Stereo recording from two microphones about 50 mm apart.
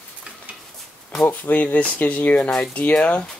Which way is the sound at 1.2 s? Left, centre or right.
Left.